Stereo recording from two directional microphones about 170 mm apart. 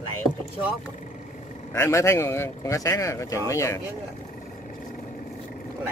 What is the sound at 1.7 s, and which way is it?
Speech, 15° left (ahead or behind).